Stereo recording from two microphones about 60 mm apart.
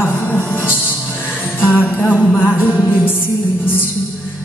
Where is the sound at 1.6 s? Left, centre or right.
Left.